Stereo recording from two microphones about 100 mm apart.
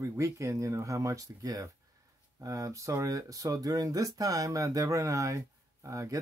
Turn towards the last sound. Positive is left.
turn(degrees=-35)  # may be behind; listen again after turning